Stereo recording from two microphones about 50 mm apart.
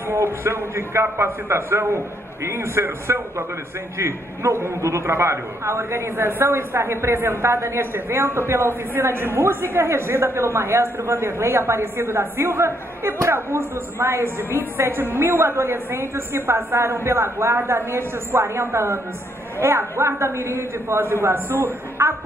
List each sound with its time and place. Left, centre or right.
0.1 s a woman's voice: right
4.8 s a woman's voice: right